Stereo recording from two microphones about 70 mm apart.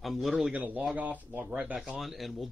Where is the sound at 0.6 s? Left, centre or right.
Right.